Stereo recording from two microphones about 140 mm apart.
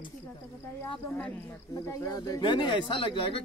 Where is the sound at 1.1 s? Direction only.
15° left (ahead or behind).